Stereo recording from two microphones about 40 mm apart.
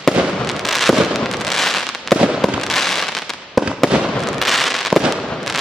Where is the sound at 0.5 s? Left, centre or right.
Centre.